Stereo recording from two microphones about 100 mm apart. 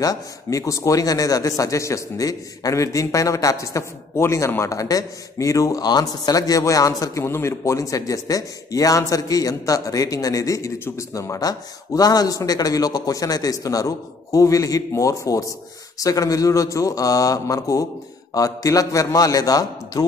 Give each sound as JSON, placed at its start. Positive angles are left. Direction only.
{"t": 0.0, "sound": "a man's voice", "side_deg": 35}